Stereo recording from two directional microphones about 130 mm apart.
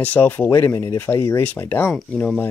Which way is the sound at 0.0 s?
15° left (ahead or behind).